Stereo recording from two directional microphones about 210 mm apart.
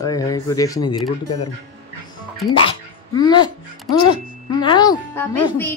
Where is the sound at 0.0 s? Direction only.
15° left (ahead or behind).